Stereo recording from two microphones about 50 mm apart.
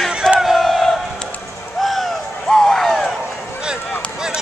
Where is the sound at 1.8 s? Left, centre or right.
Centre.